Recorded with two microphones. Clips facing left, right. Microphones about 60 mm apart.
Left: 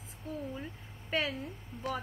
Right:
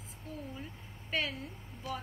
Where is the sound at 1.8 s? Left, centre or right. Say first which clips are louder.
Left 4 dB; left.